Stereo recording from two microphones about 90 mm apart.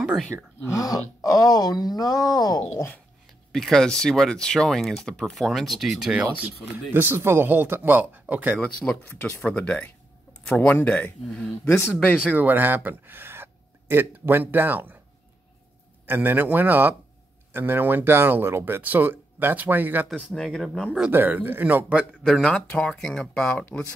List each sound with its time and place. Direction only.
0.7 s speech: 40° left (ahead or behind)
3.5 s speech: 5° left (ahead or behind)
6.4 s speech: 25° right (ahead or behind)
8.9 s speech: 10° left (ahead or behind)
12.3 s speech: 20° right (ahead or behind)
16.1 s speech: 20° right (ahead or behind)
20.2 s speech: centre (ahead or behind)
21.1 s speech: 20° right (ahead or behind)
22.2 s speech: 10° left (ahead or behind)